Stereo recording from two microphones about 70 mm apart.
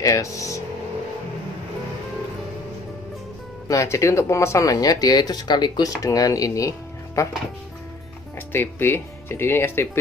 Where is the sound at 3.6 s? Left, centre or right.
Left.